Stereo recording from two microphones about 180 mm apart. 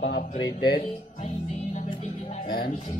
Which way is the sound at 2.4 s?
55° left (ahead or behind).